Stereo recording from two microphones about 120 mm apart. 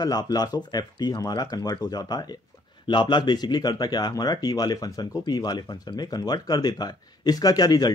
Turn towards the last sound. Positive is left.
turn(degrees=35)  # may be behind; listen again after turning